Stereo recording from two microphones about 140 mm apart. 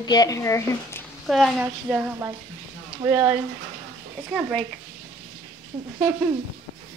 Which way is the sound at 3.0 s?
15° right (ahead or behind).